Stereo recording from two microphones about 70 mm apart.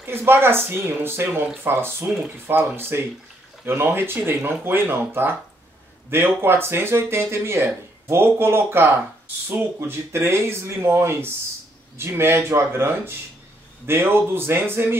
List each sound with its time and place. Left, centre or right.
0.0 s speech: right